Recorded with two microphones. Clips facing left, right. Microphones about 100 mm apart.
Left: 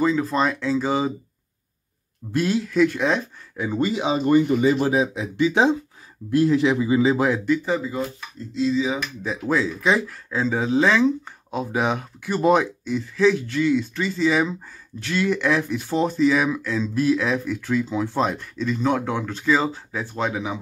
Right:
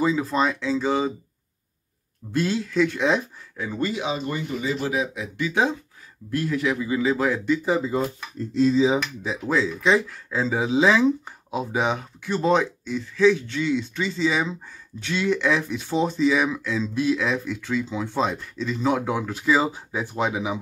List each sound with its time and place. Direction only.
0.0 s speech: 5° right (ahead or behind)
2.3 s speech: 5° left (ahead or behind)
3.5 s a man's voice: 20° left (ahead or behind)
4.2 s speech: 50° left (ahead or behind)
4.9 s a man's voice: 25° left (ahead or behind)
8.7 s speech: 30° right (ahead or behind)
9.2 s speech: centre (ahead or behind)
10.6 s speech: 10° right (ahead or behind)